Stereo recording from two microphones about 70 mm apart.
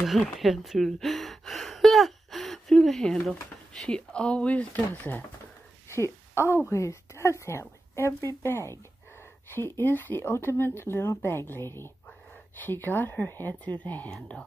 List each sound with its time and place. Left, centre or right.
0.0 s speech: centre; by 5.2 s left
5.9 s a sound: left
6.7 s a woman's voice: left